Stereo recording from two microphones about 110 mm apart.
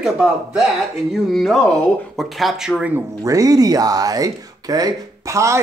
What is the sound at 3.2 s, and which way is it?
Speech, 30° right (ahead or behind).